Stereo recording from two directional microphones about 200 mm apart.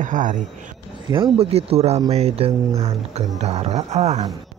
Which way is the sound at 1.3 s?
30° right (ahead or behind).